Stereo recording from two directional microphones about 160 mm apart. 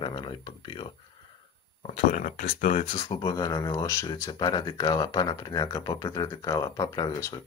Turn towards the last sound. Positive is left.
turn(degrees=20)  # may be behind; listen again after turning